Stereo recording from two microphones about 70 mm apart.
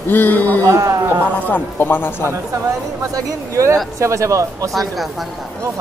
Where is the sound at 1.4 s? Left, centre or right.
Left.